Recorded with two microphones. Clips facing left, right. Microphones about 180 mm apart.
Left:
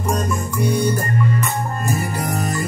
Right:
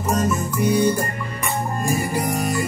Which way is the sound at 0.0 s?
5° right (ahead or behind).